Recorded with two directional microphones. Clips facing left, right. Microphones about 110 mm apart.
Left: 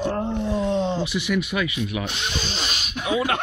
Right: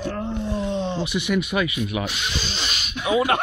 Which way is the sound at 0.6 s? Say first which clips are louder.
Left 4 dB; 35° left (ahead or behind).